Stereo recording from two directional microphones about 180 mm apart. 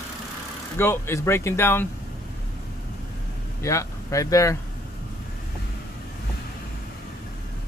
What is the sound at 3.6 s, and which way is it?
Speech, 15° left (ahead or behind).